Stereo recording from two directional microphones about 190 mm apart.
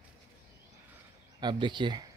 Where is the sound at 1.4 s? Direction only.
25° right (ahead or behind).